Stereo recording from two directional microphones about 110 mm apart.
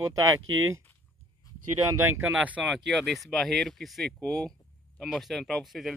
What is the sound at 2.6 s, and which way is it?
Speech, centre (ahead or behind).